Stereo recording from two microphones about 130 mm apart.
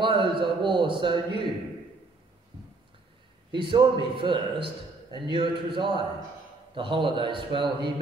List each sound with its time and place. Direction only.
0.0 s a man's voice: 40° right (ahead or behind)
3.5 s a man's voice: 40° right (ahead or behind)